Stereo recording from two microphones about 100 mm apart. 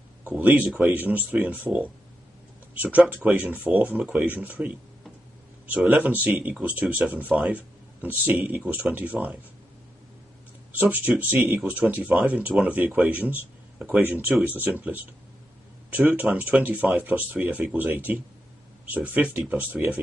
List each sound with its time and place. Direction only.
0.3 s speech: 15° right (ahead or behind)
5.9 s speech: 15° right (ahead or behind)
10.8 s speech: 15° right (ahead or behind)